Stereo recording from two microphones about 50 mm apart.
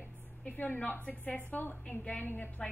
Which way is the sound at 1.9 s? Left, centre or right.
Left.